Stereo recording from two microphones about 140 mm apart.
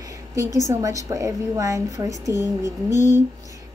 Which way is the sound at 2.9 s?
60° left (ahead or behind).